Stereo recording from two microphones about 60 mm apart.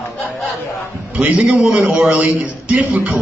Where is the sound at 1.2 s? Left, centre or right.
Right.